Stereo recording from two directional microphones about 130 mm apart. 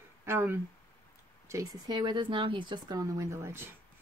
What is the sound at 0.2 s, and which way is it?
Speech, 20° right (ahead or behind).